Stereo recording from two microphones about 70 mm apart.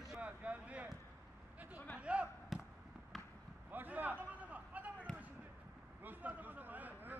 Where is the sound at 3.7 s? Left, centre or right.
Right.